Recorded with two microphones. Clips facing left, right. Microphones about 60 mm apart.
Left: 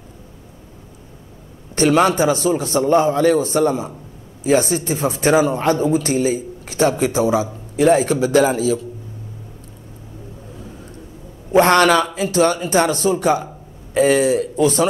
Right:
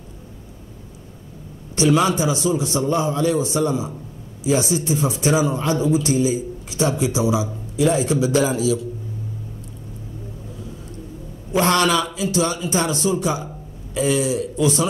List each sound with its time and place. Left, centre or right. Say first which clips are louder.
1.8 s a man's voice: left 3 dB; left
11.5 s speech: left 5 dB; left